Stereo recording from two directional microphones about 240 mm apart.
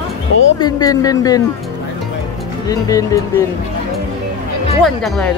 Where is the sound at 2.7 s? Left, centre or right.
Centre.